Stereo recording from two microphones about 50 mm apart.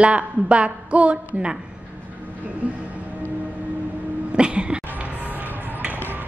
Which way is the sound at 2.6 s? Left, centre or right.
Right.